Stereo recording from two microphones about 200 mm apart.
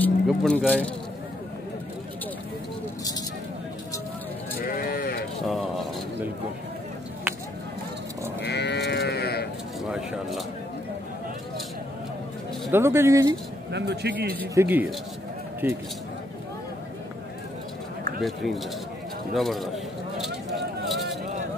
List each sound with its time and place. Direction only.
0.0 s speech: centre (ahead or behind)
4.6 s sheep: 45° left (ahead or behind)
5.4 s a sound: centre (ahead or behind)
8.4 s livestock: 60° left (ahead or behind)
9.8 s speech: 5° right (ahead or behind)
12.7 s speech: 10° right (ahead or behind)
13.7 s speech: 55° right (ahead or behind)
14.5 s speech: 10° right (ahead or behind)
18.2 s speech: centre (ahead or behind)
20.2 s a sound: centre (ahead or behind)